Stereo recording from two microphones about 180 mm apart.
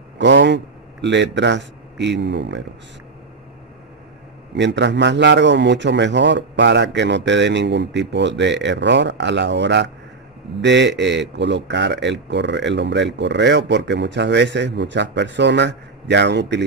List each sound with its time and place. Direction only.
0.2 s speech: 75° right (ahead or behind)
4.6 s speech: 75° right (ahead or behind)